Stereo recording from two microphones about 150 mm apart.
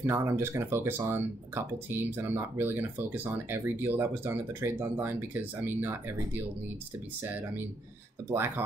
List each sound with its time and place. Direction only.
0.0 s speech: 15° right (ahead or behind)
8.3 s speech: 15° right (ahead or behind)